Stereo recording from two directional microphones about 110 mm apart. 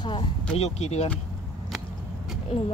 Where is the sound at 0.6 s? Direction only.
85° left.